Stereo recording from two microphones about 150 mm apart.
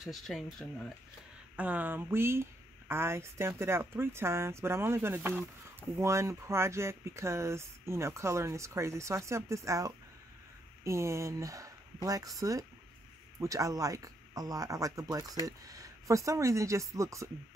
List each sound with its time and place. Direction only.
0.0 s speech: centre (ahead or behind)
1.6 s a woman's voice: 10° right (ahead or behind)